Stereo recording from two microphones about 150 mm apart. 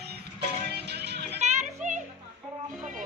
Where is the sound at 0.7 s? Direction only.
90° right.